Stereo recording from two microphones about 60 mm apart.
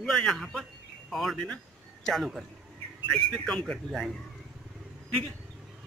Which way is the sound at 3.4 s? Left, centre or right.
Centre.